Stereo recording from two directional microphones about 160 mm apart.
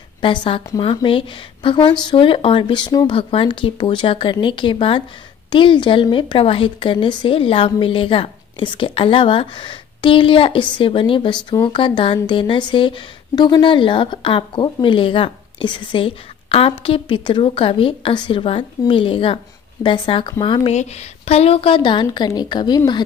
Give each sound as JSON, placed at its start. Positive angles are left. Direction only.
{"t": 0.2, "sound": "a woman's voice", "side_deg": 30}
{"t": 20.7, "sound": "a woman's voice", "side_deg": 45}